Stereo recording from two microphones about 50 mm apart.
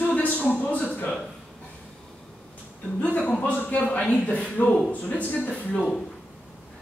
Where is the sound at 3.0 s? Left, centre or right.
Left.